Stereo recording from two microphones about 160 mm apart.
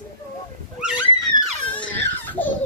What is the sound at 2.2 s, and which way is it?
Baby laughter, 10° left (ahead or behind).